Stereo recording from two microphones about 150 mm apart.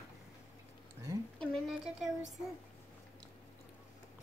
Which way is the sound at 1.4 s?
5° left (ahead or behind).